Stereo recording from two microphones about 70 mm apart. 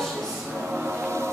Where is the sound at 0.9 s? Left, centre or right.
Right.